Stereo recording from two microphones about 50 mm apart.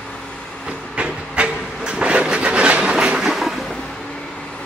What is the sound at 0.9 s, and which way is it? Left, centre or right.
Train, right.